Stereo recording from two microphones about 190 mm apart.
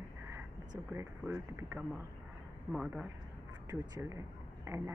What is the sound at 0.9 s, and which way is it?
Speech, 10° right (ahead or behind).